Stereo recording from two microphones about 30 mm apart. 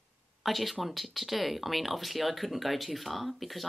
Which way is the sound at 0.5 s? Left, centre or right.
Centre.